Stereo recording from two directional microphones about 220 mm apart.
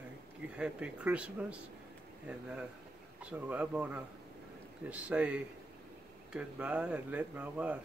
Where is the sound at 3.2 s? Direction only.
5° right (ahead or behind).